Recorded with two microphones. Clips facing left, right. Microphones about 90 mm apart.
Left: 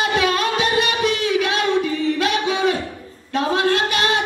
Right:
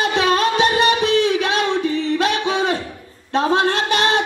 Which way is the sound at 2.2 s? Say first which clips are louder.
Left 1 dB; 30° right (ahead or behind).